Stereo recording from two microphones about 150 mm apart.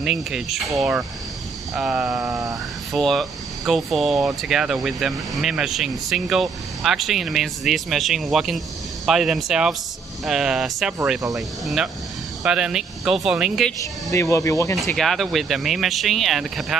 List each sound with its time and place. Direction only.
0.0 s speech: 5° right (ahead or behind)
14.1 s speech: 20° left (ahead or behind)
15.0 s speech: centre (ahead or behind)